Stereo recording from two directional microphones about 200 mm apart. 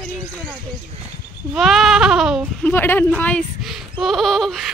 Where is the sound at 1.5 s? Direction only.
Centre (ahead or behind).